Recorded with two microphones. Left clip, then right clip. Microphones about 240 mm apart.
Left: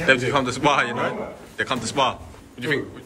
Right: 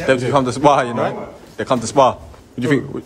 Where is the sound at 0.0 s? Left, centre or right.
Centre.